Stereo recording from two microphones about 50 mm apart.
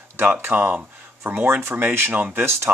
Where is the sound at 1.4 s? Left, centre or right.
Right.